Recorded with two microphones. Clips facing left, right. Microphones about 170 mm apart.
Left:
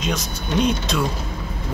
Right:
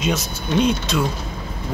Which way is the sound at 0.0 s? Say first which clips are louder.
Right 3 dB; 5° right (ahead or behind).